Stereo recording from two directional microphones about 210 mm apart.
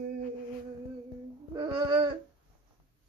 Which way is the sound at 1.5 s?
20° right (ahead or behind).